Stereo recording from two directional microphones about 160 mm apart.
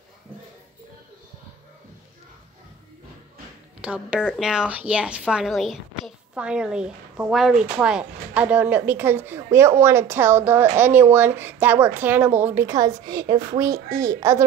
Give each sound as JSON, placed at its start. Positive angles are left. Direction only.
{"t": 3.8, "sound": "a woman's voice", "side_deg": -5}